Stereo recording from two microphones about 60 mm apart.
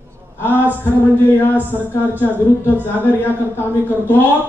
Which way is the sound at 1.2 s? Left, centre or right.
Left.